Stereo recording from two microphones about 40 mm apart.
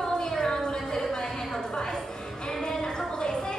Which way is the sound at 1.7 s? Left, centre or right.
Centre.